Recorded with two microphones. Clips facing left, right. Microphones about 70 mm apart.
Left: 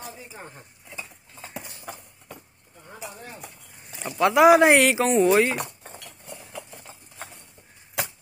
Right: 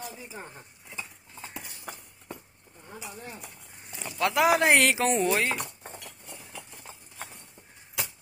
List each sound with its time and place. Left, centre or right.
1.4 s horse: left
3.4 s speech: centre
6.2 s horse: centre